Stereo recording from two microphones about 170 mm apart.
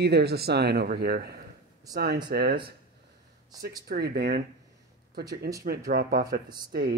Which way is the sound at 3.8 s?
70° right (ahead or behind).